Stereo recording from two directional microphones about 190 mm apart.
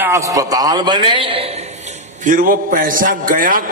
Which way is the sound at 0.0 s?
15° right (ahead or behind).